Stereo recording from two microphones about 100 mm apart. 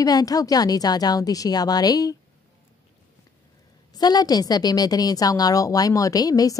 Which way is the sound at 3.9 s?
40° left (ahead or behind).